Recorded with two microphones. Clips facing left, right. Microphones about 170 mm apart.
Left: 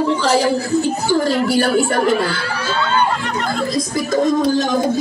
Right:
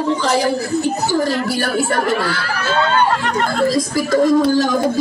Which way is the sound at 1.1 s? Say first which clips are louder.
Left 2 dB; 30° left (ahead or behind).